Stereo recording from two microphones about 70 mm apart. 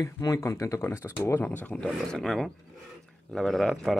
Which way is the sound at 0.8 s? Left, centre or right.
Left.